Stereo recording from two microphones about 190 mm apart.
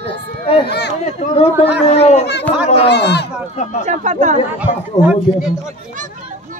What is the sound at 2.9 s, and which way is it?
Speech, 60° left (ahead or behind).